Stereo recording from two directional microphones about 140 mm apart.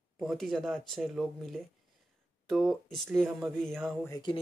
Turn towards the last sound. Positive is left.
turn(degrees=30)  # may be behind; listen again after turning